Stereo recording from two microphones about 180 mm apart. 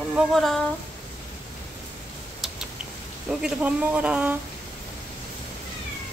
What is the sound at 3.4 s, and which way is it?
Speech, 5° right (ahead or behind).